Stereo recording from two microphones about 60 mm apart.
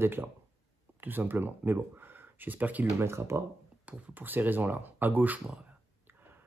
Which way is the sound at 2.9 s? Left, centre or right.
Right.